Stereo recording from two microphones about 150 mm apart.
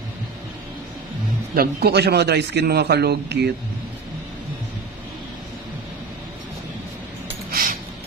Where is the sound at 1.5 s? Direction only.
90° right.